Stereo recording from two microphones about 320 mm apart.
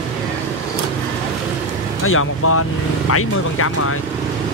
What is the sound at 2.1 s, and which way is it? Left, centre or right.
Speech, left.